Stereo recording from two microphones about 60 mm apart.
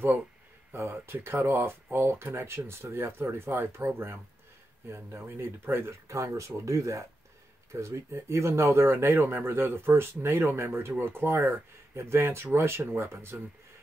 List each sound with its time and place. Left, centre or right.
0.7 s speech: right